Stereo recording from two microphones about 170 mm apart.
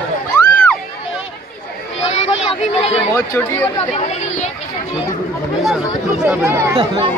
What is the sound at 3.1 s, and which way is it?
Speech, 15° left (ahead or behind).